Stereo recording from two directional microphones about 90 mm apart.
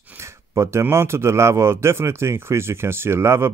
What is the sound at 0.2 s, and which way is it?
Speech, 30° right (ahead or behind).